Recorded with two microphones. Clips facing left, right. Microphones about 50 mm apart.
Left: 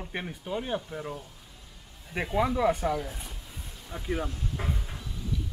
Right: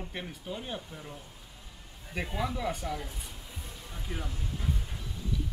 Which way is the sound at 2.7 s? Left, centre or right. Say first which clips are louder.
Left 8 dB; left.